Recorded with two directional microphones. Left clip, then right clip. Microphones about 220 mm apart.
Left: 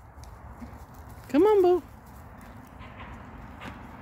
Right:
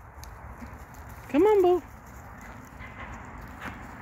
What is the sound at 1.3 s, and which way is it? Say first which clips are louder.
Speech: even; 10° left (ahead or behind).